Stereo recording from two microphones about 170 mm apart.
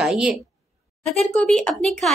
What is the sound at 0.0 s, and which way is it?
Speech, 5° right (ahead or behind).